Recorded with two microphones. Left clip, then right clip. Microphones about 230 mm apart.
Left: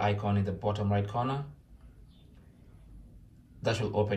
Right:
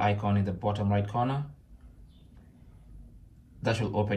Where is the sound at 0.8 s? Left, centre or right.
Centre.